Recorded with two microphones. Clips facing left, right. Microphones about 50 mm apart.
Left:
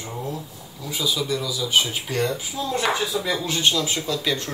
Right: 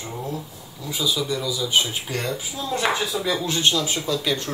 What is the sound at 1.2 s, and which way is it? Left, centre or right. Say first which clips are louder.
Speech: even; centre.